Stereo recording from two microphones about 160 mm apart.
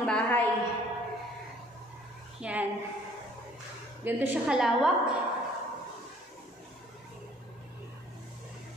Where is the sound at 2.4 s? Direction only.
10° right (ahead or behind).